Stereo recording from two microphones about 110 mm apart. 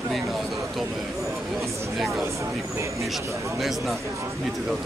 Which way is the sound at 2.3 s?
25° right (ahead or behind).